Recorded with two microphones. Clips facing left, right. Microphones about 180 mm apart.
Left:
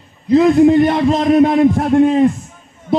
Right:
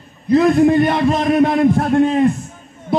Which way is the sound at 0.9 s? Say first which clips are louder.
Left 2 dB; 15° left (ahead or behind).